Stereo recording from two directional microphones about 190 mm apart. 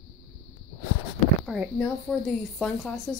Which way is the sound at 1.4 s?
Centre (ahead or behind).